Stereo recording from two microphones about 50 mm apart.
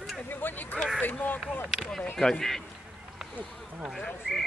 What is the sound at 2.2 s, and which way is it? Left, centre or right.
Speech, centre.